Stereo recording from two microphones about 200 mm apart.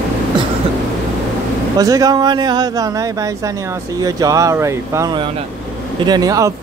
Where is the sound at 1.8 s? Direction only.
15° right (ahead or behind).